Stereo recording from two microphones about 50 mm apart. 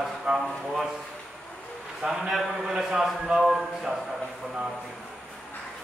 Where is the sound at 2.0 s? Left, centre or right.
Centre.